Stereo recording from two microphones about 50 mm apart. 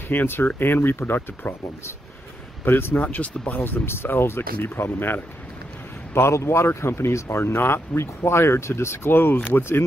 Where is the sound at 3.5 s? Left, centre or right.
Left.